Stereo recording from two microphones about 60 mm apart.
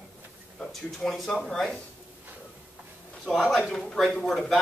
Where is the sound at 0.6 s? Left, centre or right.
Centre.